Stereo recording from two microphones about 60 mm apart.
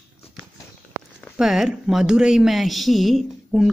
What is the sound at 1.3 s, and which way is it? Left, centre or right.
A woman's voice, centre.